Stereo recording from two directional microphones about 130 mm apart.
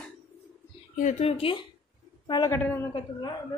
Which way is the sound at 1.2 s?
45° left (ahead or behind).